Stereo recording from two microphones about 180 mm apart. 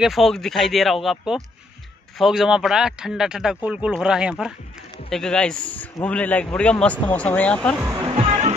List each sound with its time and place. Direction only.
0.0 s a man's voice: centre (ahead or behind)
7.8 s speech: 15° right (ahead or behind)
8.1 s music: 30° right (ahead or behind)